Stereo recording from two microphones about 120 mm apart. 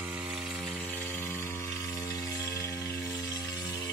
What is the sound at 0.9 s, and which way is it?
Music, 15° left (ahead or behind).